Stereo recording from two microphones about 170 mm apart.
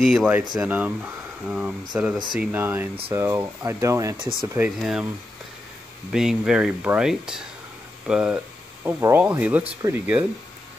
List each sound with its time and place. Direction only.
0.0 s speech: centre (ahead or behind); by 4.2 s 15° right (ahead or behind)
4.6 s speech: 5° right (ahead or behind)
6.1 s speech: 5° right (ahead or behind)